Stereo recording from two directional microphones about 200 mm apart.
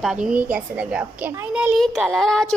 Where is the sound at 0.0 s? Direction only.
5° right (ahead or behind).